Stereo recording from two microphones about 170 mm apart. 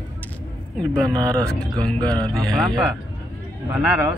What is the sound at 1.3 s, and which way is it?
Speech, 5° left (ahead or behind).